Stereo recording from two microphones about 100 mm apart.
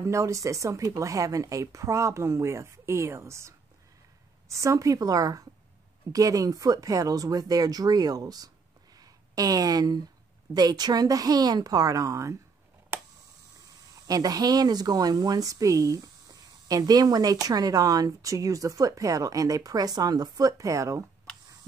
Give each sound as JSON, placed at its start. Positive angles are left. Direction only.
{"t": 0.0, "sound": "speech", "side_deg": -30}
{"t": 8.9, "sound": "a sound", "side_deg": -40}
{"t": 10.5, "sound": "speech", "side_deg": -40}
{"t": 14.0, "sound": "speech", "side_deg": -40}